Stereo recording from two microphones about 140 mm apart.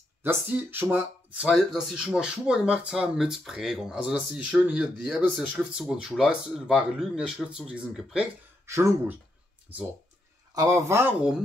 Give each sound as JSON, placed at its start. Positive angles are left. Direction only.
{"t": 0.2, "sound": "speech", "side_deg": -15}
{"t": 1.7, "sound": "speech", "side_deg": -5}
{"t": 8.6, "sound": "a man's voice", "side_deg": -20}
{"t": 10.5, "sound": "a man's voice", "side_deg": -25}